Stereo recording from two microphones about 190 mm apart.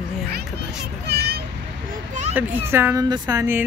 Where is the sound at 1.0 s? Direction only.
55° right (ahead or behind).